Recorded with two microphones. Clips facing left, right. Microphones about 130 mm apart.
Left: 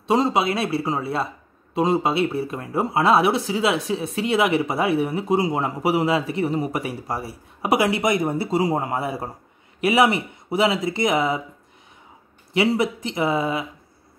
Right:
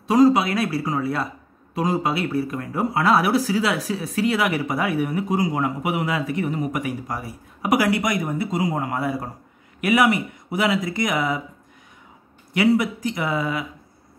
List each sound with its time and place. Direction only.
0.0 s speech: 25° left (ahead or behind)
12.5 s speech: 25° left (ahead or behind)